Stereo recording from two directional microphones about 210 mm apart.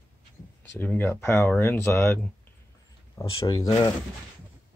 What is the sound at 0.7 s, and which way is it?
Speech, 10° left (ahead or behind).